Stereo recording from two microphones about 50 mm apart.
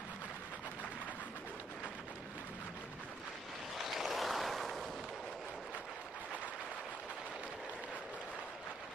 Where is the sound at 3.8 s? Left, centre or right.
Centre.